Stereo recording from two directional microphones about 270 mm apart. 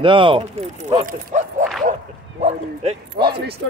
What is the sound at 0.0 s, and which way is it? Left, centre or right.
Speech, centre.